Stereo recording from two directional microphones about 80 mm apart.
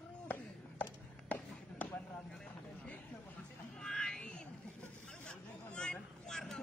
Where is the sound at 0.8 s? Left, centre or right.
Centre.